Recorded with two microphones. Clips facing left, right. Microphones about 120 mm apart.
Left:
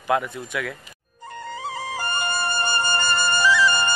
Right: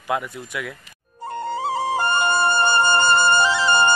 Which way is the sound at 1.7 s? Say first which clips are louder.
Right 8 dB; 25° right (ahead or behind).